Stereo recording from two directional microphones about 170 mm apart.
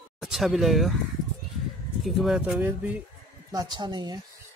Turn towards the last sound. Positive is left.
turn(degrees=-25)  # may be behind; listen again after turning